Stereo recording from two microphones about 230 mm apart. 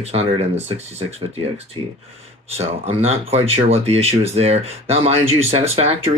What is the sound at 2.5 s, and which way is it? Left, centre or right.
Speech, right.